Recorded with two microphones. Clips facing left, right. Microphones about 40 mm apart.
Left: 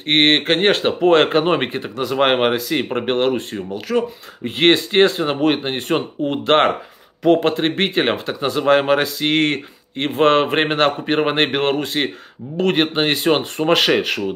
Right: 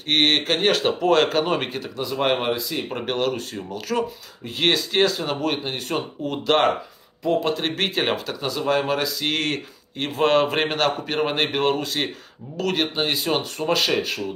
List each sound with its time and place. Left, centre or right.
0.0 s speech: left
2.0 s speech: left
2.9 s speech: left
3.9 s speech: centre
4.5 s speech: left
7.7 s speech: left
8.5 s speech: left
9.2 s speech: left